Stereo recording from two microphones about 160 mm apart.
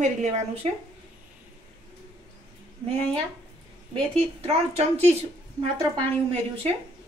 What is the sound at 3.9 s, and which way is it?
A woman's voice, 40° right (ahead or behind).